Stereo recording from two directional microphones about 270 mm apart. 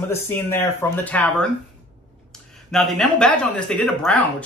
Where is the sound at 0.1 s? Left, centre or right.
Centre.